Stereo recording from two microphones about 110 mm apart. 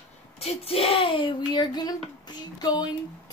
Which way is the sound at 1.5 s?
35° left (ahead or behind).